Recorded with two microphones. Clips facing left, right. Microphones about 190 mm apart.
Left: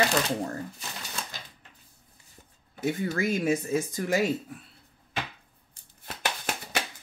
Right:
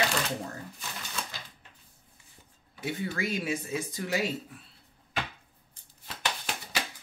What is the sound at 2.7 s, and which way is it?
Speech, 45° left (ahead or behind).